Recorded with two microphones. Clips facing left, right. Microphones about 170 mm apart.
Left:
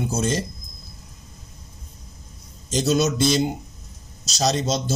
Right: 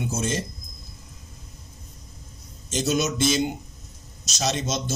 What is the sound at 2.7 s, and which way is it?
Speech, 35° left (ahead or behind).